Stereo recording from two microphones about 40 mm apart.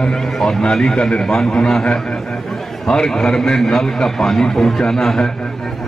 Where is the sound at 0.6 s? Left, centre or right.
Left.